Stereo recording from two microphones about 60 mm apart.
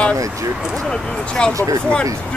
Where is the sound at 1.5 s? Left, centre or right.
Right.